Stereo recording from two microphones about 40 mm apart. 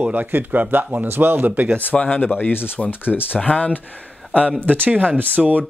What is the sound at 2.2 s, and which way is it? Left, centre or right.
Speech, left.